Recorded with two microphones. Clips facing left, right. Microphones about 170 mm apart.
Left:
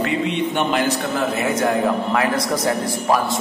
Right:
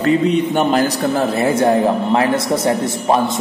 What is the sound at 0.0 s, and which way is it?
A man's voice, 40° right (ahead or behind).